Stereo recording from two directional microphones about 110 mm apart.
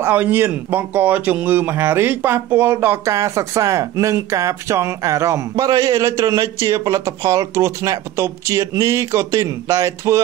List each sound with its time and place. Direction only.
0.0 s speech: 15° right (ahead or behind)